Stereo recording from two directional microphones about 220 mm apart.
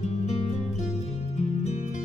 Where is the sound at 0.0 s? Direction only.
30° left (ahead or behind).